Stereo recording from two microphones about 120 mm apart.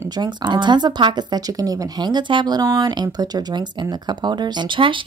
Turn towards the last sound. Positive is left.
turn(degrees=-45)  # may be behind; listen again after turning